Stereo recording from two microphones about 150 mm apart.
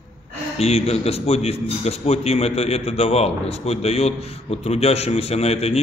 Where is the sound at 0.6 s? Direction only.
45° left (ahead or behind).